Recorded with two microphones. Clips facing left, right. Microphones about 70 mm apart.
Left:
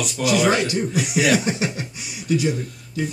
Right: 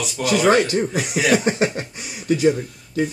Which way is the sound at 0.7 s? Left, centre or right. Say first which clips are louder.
Right 1 dB; right.